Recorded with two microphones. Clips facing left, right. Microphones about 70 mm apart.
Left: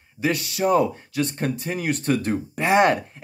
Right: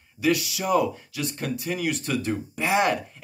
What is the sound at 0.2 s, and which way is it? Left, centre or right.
Speech, left.